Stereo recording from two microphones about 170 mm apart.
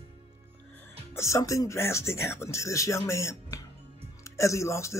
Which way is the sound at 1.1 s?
15° left (ahead or behind).